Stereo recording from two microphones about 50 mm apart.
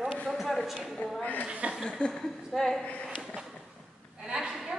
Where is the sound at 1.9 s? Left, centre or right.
Centre.